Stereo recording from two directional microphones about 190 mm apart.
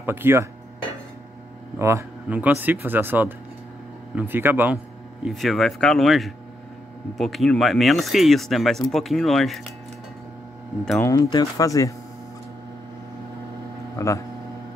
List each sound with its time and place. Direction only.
0.0 s speech: 10° right (ahead or behind)
1.8 s speech: 15° right (ahead or behind)
5.2 s speech: centre (ahead or behind)
11.0 s speech: 20° left (ahead or behind)
13.9 s speech: 15° left (ahead or behind)